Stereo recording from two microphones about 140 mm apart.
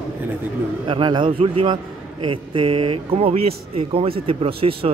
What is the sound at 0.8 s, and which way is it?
A man's voice, 35° right (ahead or behind).